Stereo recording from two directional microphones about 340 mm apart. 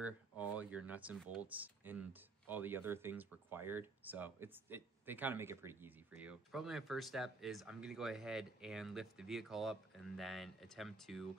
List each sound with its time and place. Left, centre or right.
0.0 s speech: centre